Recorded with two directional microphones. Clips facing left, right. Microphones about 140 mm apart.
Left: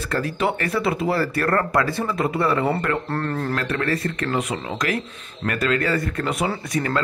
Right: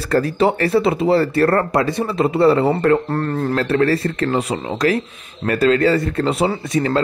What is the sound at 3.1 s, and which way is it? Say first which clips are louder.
Speech: right 5 dB; 10° right (ahead or behind).